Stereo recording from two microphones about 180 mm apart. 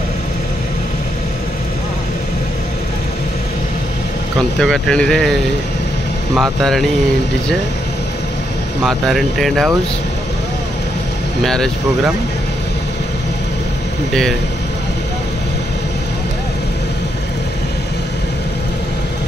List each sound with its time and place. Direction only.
4.6 s speech: centre (ahead or behind)
8.8 s speech: centre (ahead or behind)
11.4 s speech: 5° left (ahead or behind)